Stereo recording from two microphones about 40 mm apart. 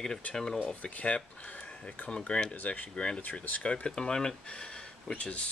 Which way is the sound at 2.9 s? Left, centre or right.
Left.